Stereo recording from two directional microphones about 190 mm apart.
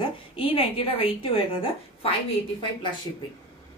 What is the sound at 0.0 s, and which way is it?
A woman's voice, 30° left (ahead or behind).